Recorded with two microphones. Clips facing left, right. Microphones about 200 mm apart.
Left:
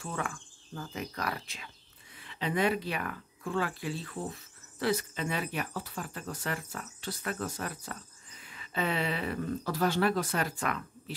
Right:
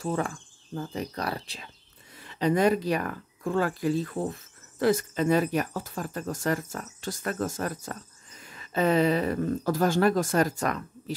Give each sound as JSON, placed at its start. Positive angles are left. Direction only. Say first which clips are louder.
{"t": 0.0, "sound": "speech", "louder": "right 8 dB", "side_deg": -35}